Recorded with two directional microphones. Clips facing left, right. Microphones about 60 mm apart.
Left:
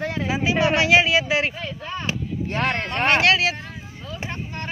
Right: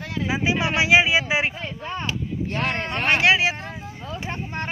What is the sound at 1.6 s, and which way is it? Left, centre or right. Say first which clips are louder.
Speech: even; right.